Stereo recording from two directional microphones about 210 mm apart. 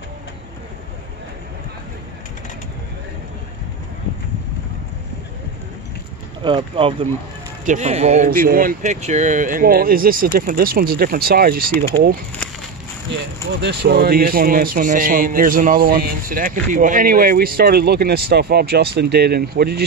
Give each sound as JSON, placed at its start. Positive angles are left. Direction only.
{"t": 6.4, "sound": "speech", "side_deg": -25}
{"t": 13.6, "sound": "speech", "side_deg": -50}